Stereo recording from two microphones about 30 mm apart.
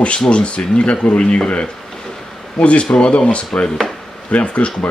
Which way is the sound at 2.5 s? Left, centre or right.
Left.